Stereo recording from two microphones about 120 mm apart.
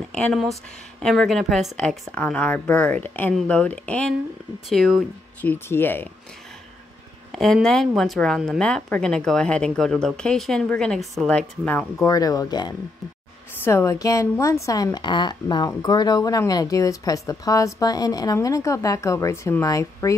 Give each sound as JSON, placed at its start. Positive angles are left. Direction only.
{"t": 0.1, "sound": "a woman's voice", "side_deg": 0}
{"t": 5.4, "sound": "speech", "side_deg": 15}
{"t": 7.3, "sound": "a woman's voice", "side_deg": 0}
{"t": 12.0, "sound": "speech", "side_deg": 30}
{"t": 13.7, "sound": "a woman's voice", "side_deg": 25}